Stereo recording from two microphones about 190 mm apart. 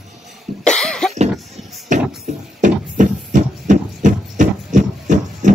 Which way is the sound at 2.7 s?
40° right (ahead or behind).